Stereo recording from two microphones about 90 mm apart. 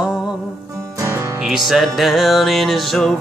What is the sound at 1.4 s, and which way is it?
Music, 5° right (ahead or behind).